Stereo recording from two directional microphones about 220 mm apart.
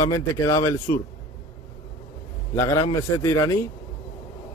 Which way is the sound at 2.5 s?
15° left (ahead or behind).